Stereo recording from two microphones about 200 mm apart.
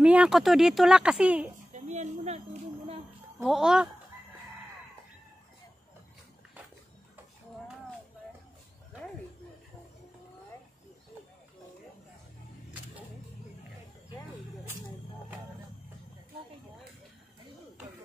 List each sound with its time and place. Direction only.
0.0 s speech: 5° right (ahead or behind)
1.7 s a sound: 35° right (ahead or behind)
3.4 s speech: 5° right (ahead or behind)